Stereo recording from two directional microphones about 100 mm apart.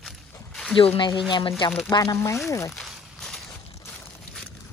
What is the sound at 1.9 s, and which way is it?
Speech, 45° left (ahead or behind).